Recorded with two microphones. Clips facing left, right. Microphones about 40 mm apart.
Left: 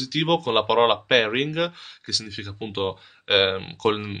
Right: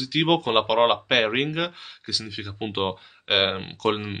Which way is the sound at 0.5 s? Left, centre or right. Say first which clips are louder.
Left 3 dB; centre.